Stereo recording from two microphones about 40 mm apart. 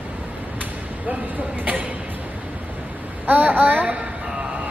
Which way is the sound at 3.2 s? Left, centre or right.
Right.